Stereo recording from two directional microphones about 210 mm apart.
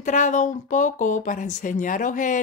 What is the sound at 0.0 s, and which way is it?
Speech, 35° left (ahead or behind).